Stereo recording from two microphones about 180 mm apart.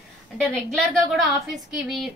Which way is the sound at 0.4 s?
Centre (ahead or behind).